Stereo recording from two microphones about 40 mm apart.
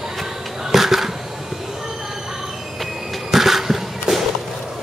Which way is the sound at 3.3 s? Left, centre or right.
Centre.